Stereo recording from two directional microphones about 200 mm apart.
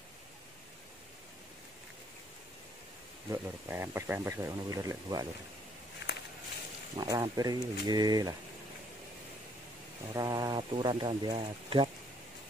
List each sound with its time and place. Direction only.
3.3 s speech: 10° right (ahead or behind)
6.0 s a sound: 60° left (ahead or behind)
7.0 s speech: 20° right (ahead or behind)
10.1 s speech: 20° right (ahead or behind)